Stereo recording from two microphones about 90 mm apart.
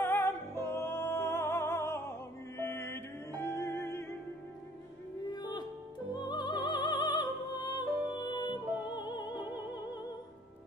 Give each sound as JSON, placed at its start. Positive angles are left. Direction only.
{"t": 0.0, "sound": "music", "side_deg": 25}
{"t": 5.3, "sound": "music", "side_deg": 50}